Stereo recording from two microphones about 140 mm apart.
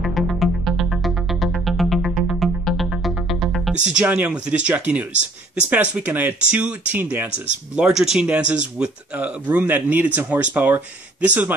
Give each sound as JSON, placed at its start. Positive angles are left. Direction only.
{"t": 0.0, "sound": "music", "side_deg": 0}
{"t": 3.8, "sound": "speech", "side_deg": -10}